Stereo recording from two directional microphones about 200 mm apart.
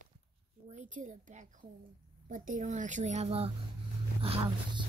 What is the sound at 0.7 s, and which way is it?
A woman's voice, 40° right (ahead or behind).